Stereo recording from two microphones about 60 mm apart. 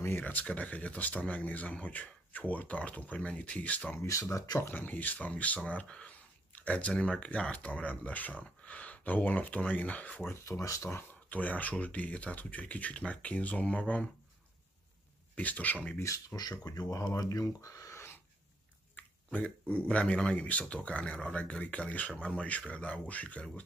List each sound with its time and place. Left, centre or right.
0.1 s speech: left
4.0 s speech: left
4.6 s speech: left
10.4 s speech: left
11.2 s speech: left
15.3 s speech: left
16.0 s speech: left
19.3 s speech: left